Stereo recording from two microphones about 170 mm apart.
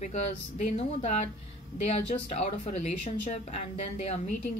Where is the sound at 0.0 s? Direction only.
40° left (ahead or behind).